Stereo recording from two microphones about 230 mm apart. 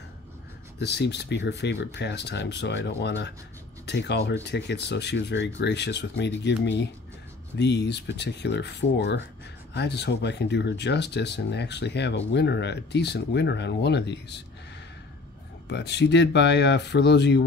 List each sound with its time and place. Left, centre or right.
0.7 s speech: left
15.7 s speech: left